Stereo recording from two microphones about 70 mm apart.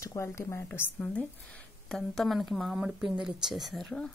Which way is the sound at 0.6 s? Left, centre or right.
Left.